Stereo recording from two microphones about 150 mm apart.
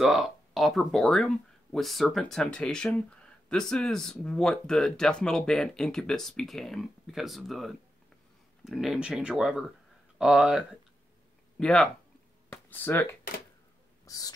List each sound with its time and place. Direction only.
0.0 s speech: centre (ahead or behind); by 13.1 s 15° left (ahead or behind)
14.0 s owl: 25° left (ahead or behind)